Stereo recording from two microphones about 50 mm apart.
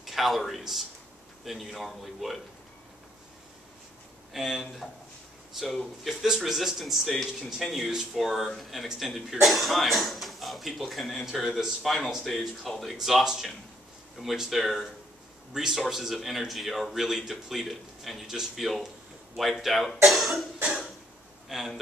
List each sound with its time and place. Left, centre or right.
0.0 s a man's voice: centre
4.3 s speech: centre
6.0 s speech: centre
8.2 s speech: centre
21.5 s speech: centre